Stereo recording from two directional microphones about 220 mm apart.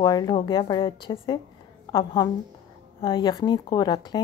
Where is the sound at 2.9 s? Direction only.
25° left (ahead or behind).